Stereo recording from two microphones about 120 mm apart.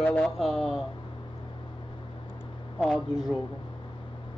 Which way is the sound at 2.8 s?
Centre (ahead or behind).